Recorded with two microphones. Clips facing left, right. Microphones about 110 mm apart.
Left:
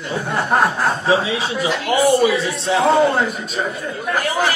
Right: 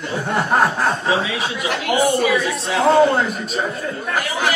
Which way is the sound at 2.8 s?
Centre (ahead or behind).